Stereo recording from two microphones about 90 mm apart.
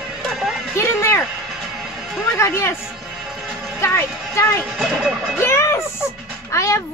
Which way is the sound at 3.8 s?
30° left (ahead or behind).